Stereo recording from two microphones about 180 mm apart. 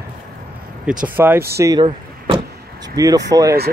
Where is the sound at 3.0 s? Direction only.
20° right (ahead or behind).